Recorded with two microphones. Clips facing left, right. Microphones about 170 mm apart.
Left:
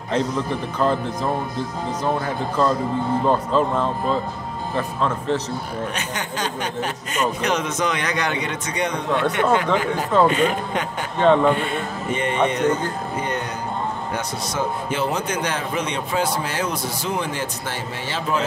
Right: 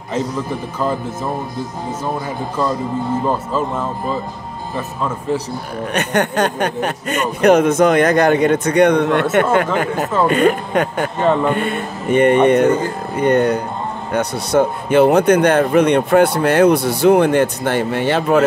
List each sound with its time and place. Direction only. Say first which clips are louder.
0.7 s speech: even; 5° right (ahead or behind)
5.9 s speech: right 11 dB; 60° right (ahead or behind)
9.3 s speech: right 4 dB; 55° right (ahead or behind)
11.1 s speech: left 1 dB; 5° right (ahead or behind)
11.5 s speech: right 4 dB; 55° right (ahead or behind)